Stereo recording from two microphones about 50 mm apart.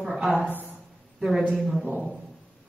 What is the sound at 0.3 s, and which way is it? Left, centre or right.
Speech, left.